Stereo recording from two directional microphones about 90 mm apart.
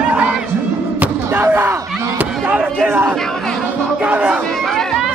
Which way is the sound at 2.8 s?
20° right (ahead or behind).